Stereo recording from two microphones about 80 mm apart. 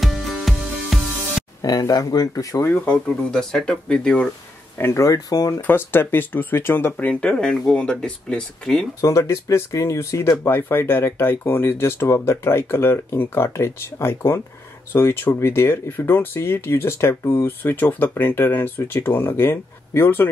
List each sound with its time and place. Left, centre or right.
0.0 s music: centre
1.6 s speech: left
2.7 s speech: centre
4.7 s speech: left
5.3 s speech: left
5.6 s speech: left
7.0 s speech: centre
9.0 s speech: left